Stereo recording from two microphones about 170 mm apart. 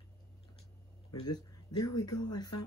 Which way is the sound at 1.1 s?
25° left (ahead or behind).